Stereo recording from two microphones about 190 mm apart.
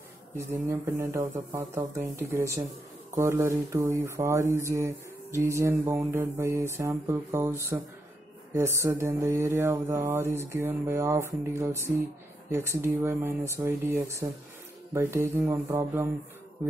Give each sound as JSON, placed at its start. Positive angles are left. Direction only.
{"t": 0.4, "sound": "speech", "side_deg": -15}